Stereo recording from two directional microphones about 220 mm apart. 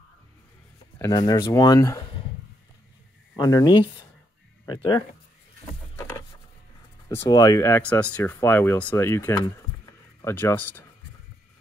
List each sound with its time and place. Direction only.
0.9 s speech: 15° left (ahead or behind)
3.3 s speech: 15° left (ahead or behind)
7.2 s speech: 15° left (ahead or behind)